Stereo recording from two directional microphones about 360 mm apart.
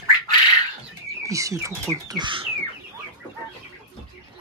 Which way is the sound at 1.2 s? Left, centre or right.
Centre.